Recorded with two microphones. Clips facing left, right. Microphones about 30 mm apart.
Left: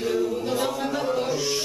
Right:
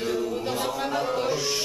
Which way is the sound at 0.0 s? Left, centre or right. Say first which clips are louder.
Left 3 dB; centre.